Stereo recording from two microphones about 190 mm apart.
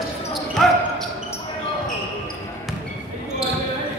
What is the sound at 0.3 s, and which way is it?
Basketball bounce, centre (ahead or behind).